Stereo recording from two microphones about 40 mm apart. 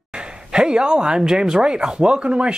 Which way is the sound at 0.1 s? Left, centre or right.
Right.